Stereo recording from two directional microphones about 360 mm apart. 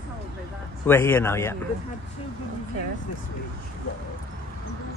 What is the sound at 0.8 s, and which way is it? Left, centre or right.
Speech, centre.